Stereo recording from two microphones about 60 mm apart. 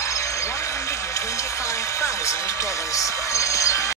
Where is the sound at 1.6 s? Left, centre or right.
Left.